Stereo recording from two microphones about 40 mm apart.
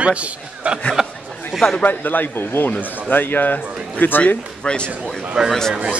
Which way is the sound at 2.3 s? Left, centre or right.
Left.